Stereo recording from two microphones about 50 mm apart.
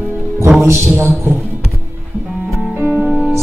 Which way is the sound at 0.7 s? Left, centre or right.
Right.